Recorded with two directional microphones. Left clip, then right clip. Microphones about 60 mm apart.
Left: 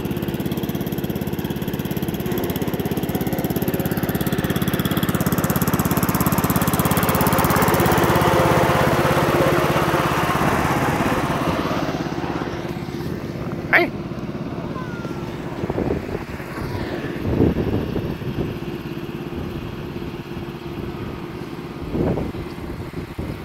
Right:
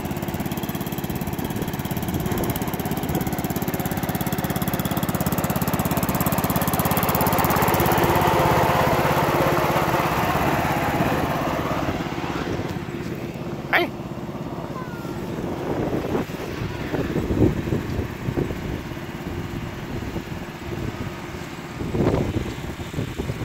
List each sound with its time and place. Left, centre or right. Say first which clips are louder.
0.6 s lawn mower: left 3 dB; centre; by 5.1 s right
5.1 s lawn mower: left 3 dB; centre; by 12.4 s left
13.7 s vehicle: left 4 dB; centre